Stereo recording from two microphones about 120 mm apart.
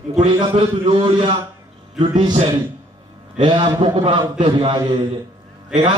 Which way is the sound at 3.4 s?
40° right (ahead or behind).